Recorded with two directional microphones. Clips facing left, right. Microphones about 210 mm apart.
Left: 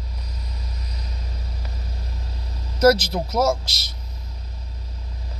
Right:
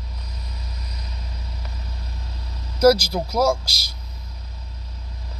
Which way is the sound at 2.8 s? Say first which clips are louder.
Right 1 dB; centre (ahead or behind).